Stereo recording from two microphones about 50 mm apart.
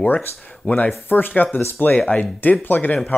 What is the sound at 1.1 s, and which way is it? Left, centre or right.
Speech, left.